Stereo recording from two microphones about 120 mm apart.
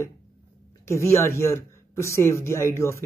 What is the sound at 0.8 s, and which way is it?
Speech, 25° left (ahead or behind).